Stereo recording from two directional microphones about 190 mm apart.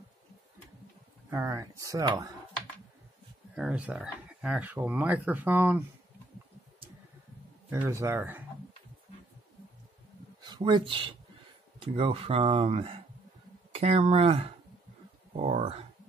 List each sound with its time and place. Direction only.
1.3 s speech: 15° right (ahead or behind)
3.5 s speech: 5° right (ahead or behind)
7.7 s speech: 15° right (ahead or behind)
10.4 s speech: 20° right (ahead or behind)